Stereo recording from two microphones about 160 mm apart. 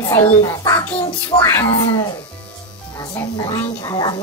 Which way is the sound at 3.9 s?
25° left (ahead or behind).